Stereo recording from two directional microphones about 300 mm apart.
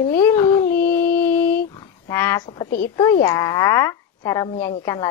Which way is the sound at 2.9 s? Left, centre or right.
Centre.